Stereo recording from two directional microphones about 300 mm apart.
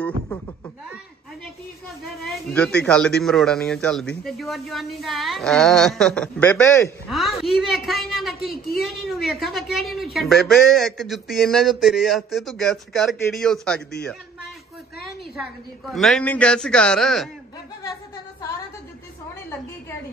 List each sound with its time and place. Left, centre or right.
2.2 s a woman's voice: centre
15.9 s a woman's voice: centre